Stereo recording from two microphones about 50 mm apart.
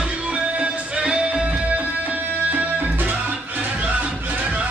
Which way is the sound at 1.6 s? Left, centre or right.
Right.